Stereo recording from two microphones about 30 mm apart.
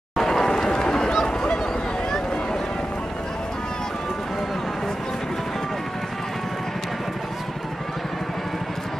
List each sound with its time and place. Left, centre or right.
0.2 s run: centre